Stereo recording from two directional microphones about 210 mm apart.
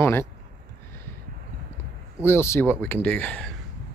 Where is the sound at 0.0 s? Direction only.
10° left (ahead or behind).